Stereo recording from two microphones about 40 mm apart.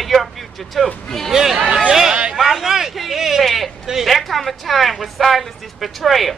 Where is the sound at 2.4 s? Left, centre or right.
Centre.